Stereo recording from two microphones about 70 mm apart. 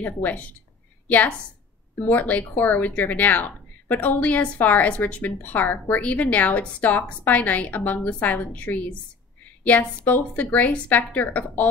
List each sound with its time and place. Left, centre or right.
0.0 s a woman's voice: left